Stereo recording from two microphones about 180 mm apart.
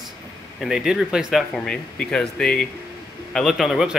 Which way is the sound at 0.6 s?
5° right (ahead or behind).